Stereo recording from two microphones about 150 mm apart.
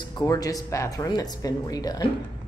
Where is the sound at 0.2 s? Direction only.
25° left (ahead or behind).